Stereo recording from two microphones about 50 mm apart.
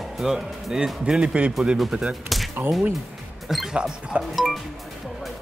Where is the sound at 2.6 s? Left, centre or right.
Right.